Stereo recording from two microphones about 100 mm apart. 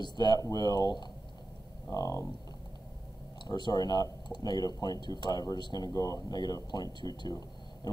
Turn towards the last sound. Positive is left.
turn(degrees=40)  # may be behind; listen again after turning